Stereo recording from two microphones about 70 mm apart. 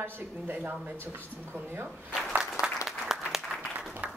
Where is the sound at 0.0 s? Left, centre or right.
Right.